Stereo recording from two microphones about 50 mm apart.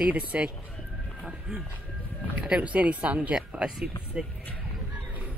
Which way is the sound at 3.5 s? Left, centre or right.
Centre.